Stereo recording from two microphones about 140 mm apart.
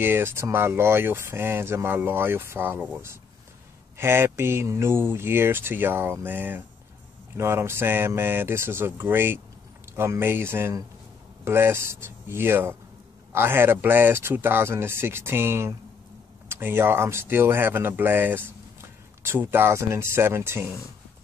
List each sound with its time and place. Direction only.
0.0 s speech: 15° right (ahead or behind)